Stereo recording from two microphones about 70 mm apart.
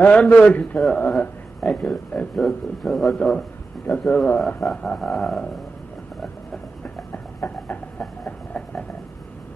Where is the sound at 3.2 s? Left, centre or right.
Centre.